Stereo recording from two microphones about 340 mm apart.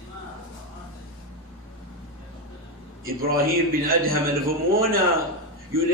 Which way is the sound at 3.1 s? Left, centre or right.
Right.